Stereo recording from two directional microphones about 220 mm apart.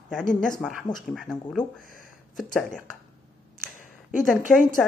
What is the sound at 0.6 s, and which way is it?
Speech, centre (ahead or behind).